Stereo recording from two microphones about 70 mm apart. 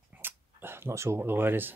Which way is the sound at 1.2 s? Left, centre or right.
Right.